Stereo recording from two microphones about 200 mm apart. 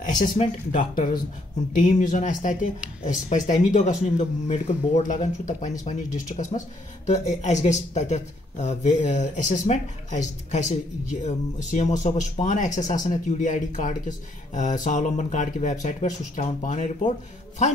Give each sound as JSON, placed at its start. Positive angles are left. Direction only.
{"t": 0.2, "sound": "speech", "side_deg": 40}